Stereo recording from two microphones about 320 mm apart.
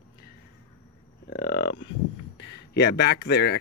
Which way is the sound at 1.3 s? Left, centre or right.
Left.